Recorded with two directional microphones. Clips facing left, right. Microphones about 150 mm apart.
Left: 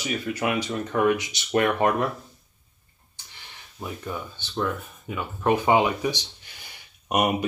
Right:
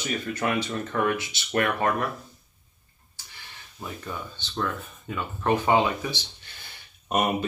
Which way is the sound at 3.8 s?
10° left (ahead or behind).